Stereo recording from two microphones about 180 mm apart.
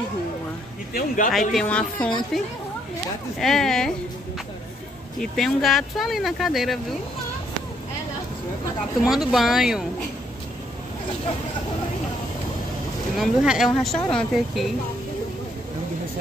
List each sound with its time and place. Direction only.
0.9 s speech: 45° left (ahead or behind)
1.5 s speech: 5° left (ahead or behind)
5.2 s speech: centre (ahead or behind)
9.0 s speech: centre (ahead or behind)
13.1 s speech: centre (ahead or behind)